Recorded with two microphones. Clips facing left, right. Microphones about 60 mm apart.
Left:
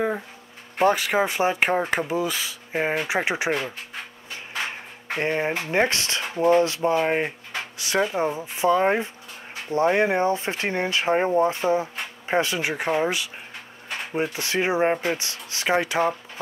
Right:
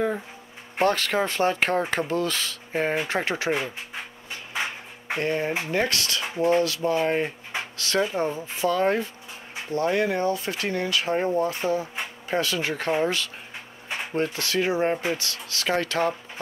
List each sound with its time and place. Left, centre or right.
0.8 s speech: centre
5.1 s speech: left